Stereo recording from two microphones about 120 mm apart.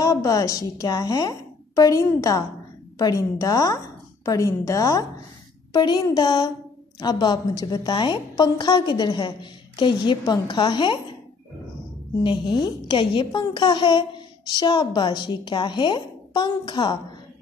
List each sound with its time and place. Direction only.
0.0 s a woman's voice: 30° left (ahead or behind)
12.2 s a woman's voice: 40° left (ahead or behind)